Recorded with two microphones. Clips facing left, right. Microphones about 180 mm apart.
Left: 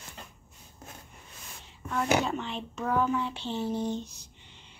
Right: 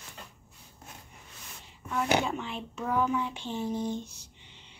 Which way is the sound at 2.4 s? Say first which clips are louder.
Left 1 dB; 5° right (ahead or behind).